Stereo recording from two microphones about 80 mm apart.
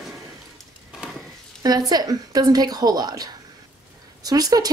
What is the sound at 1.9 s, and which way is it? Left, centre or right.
A woman's voice, right.